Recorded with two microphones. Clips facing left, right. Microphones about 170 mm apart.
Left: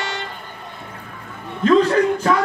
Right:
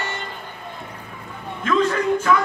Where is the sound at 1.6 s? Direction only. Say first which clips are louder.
Left 5 dB; 35° left (ahead or behind).